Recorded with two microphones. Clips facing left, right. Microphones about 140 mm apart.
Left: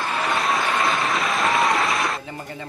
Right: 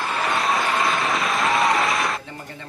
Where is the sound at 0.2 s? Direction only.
Centre (ahead or behind).